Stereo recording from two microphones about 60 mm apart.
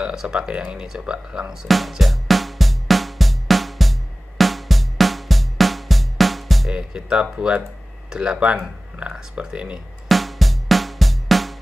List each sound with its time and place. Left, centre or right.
0.1 s speech: centre
1.5 s music: centre
6.7 s speech: centre
10.0 s music: centre